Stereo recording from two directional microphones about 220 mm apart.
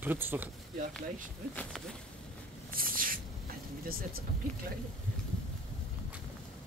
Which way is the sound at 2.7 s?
40° right (ahead or behind).